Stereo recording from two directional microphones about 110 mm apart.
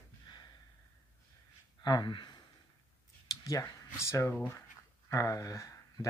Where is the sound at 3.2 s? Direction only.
30° left (ahead or behind).